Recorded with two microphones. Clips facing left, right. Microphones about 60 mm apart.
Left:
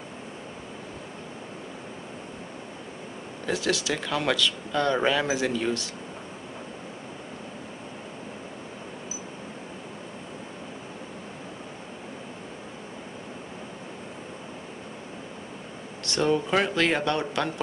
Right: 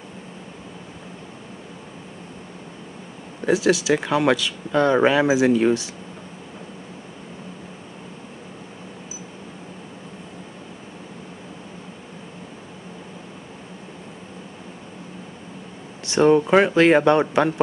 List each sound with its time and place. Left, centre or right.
3.4 s speech: centre
16.2 s speech: right